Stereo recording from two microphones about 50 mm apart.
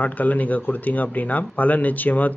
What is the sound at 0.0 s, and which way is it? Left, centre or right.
Speech, left.